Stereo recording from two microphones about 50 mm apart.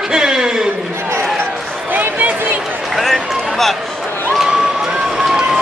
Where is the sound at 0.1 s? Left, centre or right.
Centre.